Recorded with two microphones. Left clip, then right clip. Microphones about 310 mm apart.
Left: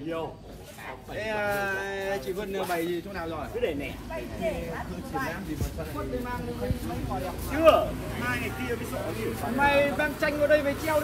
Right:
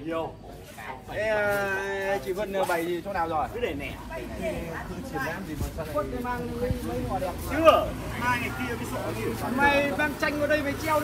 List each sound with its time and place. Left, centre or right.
1.1 s speech: right
7.5 s speech: right